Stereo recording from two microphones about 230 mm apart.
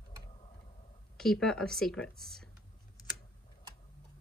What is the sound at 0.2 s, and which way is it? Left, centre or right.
Tick-tock, left.